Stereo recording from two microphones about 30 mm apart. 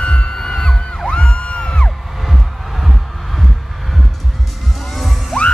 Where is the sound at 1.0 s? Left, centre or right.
Left.